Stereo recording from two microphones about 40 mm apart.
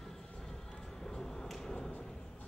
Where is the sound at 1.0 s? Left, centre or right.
Centre.